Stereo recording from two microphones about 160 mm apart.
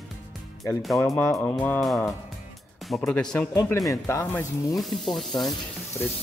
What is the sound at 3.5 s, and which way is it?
Speech, 15° left (ahead or behind).